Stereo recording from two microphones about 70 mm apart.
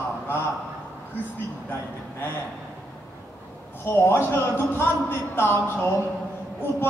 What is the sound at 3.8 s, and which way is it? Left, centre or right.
A man's voice, left.